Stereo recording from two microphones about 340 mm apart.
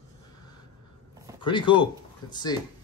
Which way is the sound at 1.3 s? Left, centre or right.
Centre.